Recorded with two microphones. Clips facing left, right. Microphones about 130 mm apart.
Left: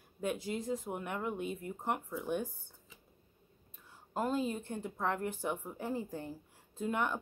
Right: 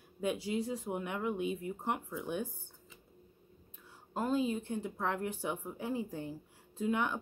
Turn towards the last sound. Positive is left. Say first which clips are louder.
# right 1 dB
turn(degrees=0)  # may be behind; listen again after turning